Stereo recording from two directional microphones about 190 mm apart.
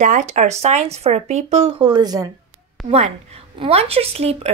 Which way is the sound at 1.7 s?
20° right (ahead or behind).